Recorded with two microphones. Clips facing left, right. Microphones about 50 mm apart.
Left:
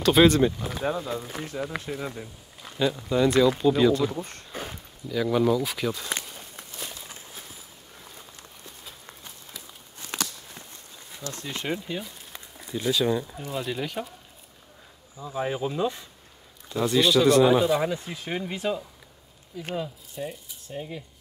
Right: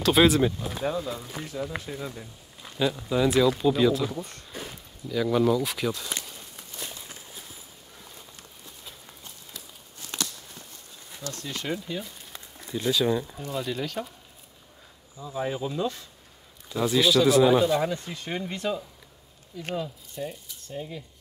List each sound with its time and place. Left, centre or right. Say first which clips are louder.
0.0 s speech: left 2 dB; centre
1.4 s speech: left 1 dB; left
2.6 s speech: left 1 dB; centre
4.1 s speech: left 2 dB; left
5.0 s speech: even; centre
6.8 s walk: even; centre
9.9 s walk: left 2 dB; left
11.2 s speech: left 1 dB; left
12.0 s speech: even; centre
15.1 s speech: left 1 dB; centre
16.6 s speech: left 1 dB; centre